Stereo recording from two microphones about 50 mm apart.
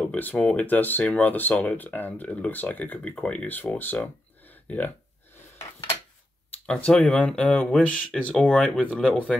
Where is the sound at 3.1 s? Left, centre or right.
Centre.